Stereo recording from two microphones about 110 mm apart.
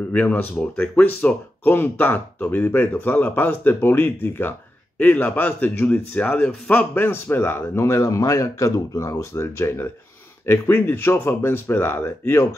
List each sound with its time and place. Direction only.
0.1 s speech: 15° left (ahead or behind)